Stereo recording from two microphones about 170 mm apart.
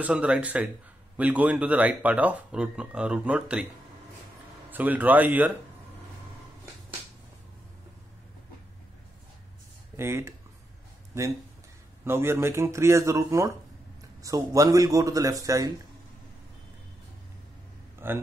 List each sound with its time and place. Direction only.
0.0 s speech: 5° right (ahead or behind)
4.6 s speech: 10° right (ahead or behind)
9.9 s a man's voice: 15° right (ahead or behind)
18.0 s speech: 15° right (ahead or behind)